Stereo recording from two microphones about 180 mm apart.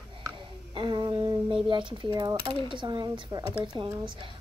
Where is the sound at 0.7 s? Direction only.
25° right (ahead or behind).